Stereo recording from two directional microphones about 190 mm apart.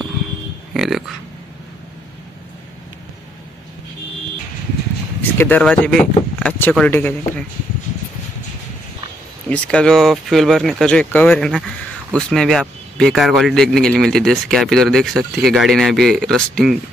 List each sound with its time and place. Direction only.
0.7 s a sound: centre (ahead or behind)
5.4 s speech: 5° left (ahead or behind)
9.5 s speech: 5° left (ahead or behind)